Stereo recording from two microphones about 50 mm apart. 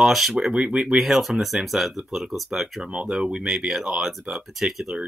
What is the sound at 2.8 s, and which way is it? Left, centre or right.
Speech, centre.